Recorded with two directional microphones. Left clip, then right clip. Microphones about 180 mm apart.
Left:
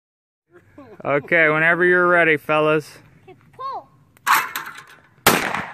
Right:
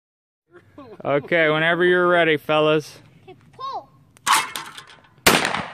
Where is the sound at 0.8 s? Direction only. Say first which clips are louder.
Left 1 dB; centre (ahead or behind).